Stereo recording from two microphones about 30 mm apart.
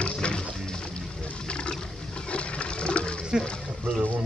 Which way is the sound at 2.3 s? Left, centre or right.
Left.